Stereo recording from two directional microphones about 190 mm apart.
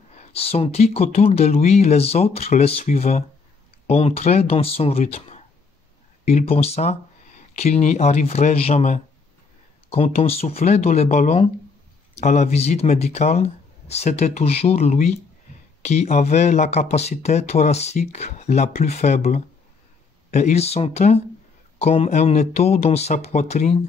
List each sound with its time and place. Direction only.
0.1 s speech: 30° left (ahead or behind)